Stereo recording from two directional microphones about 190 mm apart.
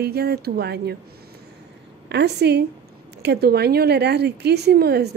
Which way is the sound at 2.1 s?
60° right (ahead or behind).